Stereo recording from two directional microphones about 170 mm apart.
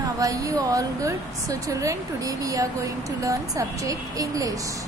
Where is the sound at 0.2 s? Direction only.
20° right (ahead or behind).